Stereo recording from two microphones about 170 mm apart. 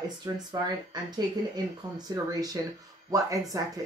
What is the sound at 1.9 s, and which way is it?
Speech, 20° right (ahead or behind).